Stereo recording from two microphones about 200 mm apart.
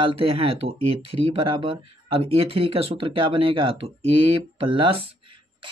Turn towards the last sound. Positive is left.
turn(degrees=-25)  # may be behind; listen again after turning